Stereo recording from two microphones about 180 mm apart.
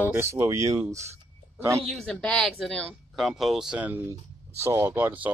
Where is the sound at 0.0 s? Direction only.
10° right (ahead or behind).